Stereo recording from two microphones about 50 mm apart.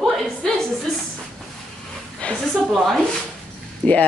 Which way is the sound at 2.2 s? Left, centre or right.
Left.